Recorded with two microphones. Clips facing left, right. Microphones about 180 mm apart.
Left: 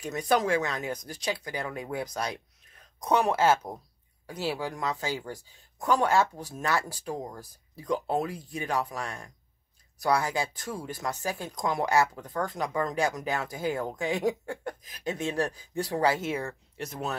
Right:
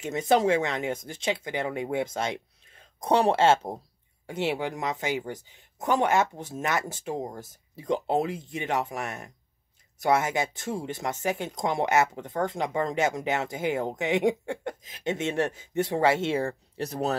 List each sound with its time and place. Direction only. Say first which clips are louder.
0.0 s speech: right 3 dB; 25° right (ahead or behind)